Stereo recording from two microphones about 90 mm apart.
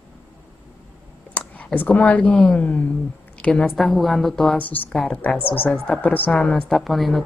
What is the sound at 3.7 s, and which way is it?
Speech, centre (ahead or behind).